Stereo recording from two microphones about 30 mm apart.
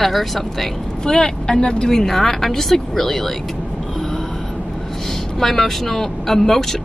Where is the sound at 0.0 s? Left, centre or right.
Centre.